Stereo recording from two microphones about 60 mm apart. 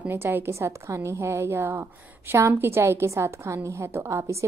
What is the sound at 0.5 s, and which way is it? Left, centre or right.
A woman's voice, right.